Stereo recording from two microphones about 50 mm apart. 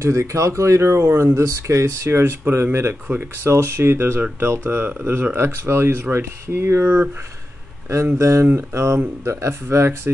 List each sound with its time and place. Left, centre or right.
0.0 s speech: right
8.2 s speech: right